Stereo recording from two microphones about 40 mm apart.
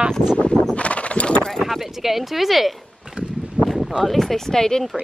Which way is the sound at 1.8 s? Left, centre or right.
Centre.